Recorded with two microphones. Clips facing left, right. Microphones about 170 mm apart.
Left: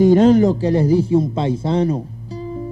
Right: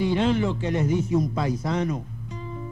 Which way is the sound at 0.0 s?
40° left (ahead or behind).